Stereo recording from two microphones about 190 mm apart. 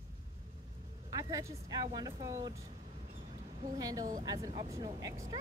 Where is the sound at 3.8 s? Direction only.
20° right (ahead or behind).